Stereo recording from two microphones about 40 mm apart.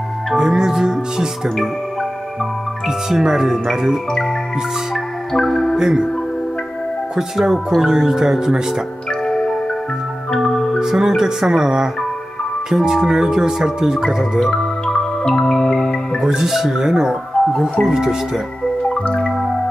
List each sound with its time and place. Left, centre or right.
0.4 s music: centre
3.1 s speech: centre
5.3 s music: centre
5.8 s speech: centre
7.2 s speech: centre
9.2 s marimba: centre
10.3 s music: centre
10.8 s speech: centre
14.5 s music: centre
16.2 s speech: centre
17.5 s speech: centre
17.8 s speech: centre
19.0 s music: left